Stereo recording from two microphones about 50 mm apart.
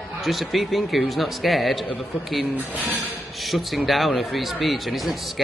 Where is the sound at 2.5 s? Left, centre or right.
Right.